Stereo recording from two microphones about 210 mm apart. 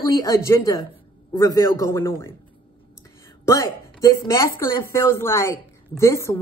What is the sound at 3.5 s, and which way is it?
A woman's voice, 15° left (ahead or behind).